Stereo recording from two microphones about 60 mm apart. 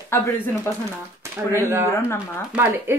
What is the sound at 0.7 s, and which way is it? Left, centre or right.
Speech, left.